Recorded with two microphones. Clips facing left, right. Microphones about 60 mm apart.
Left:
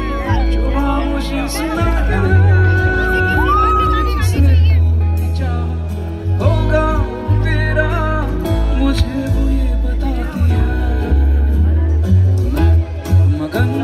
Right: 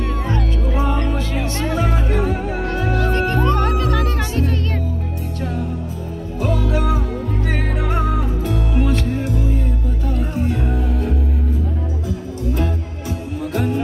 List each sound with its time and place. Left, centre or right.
0.1 s music: left
3.6 s music: centre
6.4 s music: left